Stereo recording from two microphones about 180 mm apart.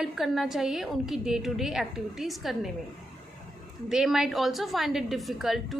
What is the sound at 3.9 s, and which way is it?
A woman's voice, 5° right (ahead or behind).